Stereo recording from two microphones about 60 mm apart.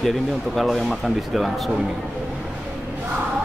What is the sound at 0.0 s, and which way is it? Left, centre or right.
Speech, centre.